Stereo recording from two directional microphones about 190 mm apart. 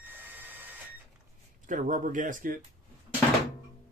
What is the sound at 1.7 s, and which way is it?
Speech, 45° right (ahead or behind).